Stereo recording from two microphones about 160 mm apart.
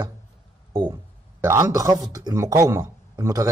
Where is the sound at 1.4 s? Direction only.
20° right (ahead or behind).